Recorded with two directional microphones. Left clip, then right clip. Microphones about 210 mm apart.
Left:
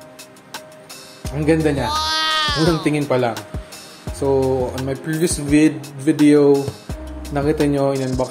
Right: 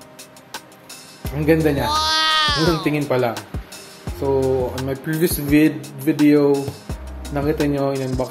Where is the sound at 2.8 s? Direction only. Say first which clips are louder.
Left 1 dB; 10° left (ahead or behind).